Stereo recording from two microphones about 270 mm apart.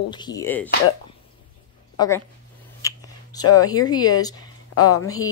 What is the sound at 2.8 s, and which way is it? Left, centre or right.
Finger snapping, centre.